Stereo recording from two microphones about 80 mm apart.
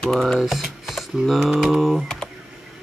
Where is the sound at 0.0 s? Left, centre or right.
Centre.